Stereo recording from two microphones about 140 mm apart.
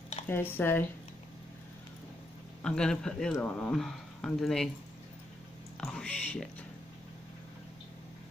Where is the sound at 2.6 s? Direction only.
5° left (ahead or behind).